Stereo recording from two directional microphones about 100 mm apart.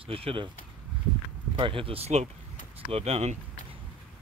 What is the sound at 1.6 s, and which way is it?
Speech, 65° right (ahead or behind).